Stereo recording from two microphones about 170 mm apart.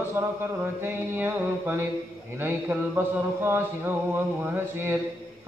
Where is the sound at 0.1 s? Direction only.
15° right (ahead or behind).